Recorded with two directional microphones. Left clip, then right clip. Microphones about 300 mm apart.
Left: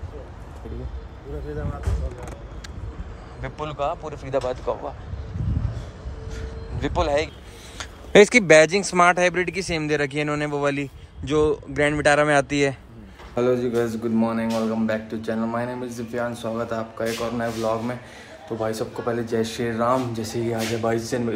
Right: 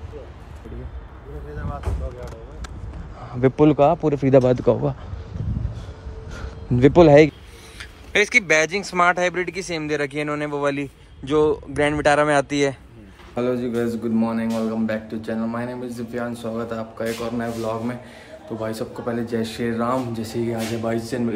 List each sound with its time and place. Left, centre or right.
3.3 s speech: centre
6.3 s a sound: right
8.1 s speech: left; by 21.2 s centre